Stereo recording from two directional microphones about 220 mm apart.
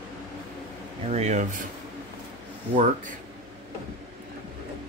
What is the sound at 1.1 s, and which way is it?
Speech, 30° right (ahead or behind).